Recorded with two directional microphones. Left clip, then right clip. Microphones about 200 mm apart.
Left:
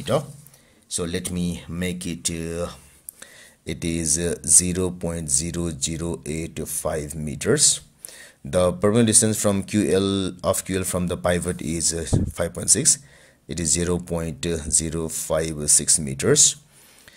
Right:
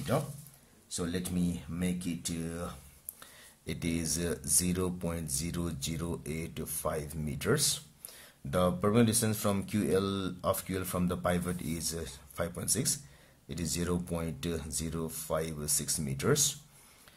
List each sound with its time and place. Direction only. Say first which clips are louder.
0.1 s speech: left 9 dB; 45° left (ahead or behind)
3.6 s speech: left 9 dB; 25° left (ahead or behind)